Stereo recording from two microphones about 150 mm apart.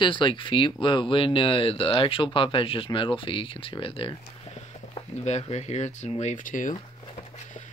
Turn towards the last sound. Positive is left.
turn(degrees=60)  # may be behind; listen again after turning